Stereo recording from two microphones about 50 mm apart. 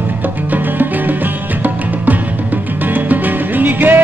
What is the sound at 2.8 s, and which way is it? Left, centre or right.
Music, right.